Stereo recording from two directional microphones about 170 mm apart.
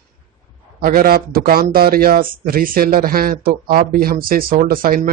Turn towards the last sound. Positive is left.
turn(degrees=-55)  # may be behind; listen again after turning